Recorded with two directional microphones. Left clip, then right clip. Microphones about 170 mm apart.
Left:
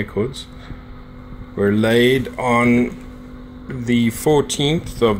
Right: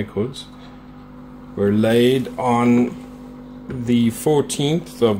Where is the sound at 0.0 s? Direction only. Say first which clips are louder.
Left 2 dB; 10° left (ahead or behind).